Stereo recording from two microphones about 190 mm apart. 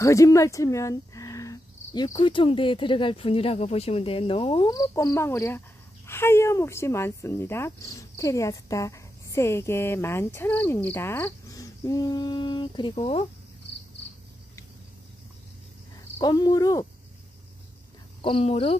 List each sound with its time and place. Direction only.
0.0 s speech: 15° left (ahead or behind)
16.2 s speech: 20° left (ahead or behind)
18.2 s speech: 30° left (ahead or behind)